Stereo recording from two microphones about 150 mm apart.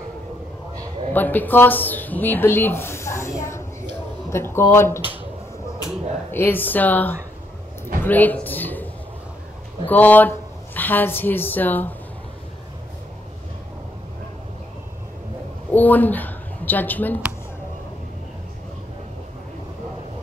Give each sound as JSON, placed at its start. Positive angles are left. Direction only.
{"t": 1.1, "sound": "speech", "side_deg": 10}
{"t": 6.3, "sound": "speech", "side_deg": 15}
{"t": 9.8, "sound": "speech", "side_deg": 10}
{"t": 15.7, "sound": "speech", "side_deg": 10}